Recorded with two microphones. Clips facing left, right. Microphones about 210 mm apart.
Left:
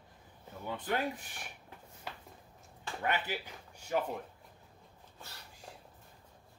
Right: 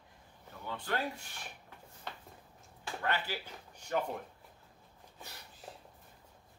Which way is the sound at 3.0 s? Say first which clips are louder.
Left 1 dB; 15° left (ahead or behind).